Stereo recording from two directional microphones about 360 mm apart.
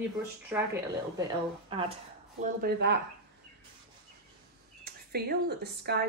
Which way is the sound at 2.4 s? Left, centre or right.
Right.